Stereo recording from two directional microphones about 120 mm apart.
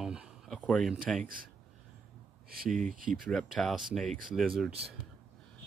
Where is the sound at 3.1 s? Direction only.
Centre (ahead or behind).